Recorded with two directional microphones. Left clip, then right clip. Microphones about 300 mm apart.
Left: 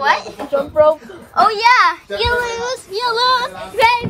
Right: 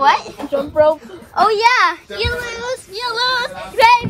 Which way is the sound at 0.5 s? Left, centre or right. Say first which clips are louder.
Left 1 dB; centre.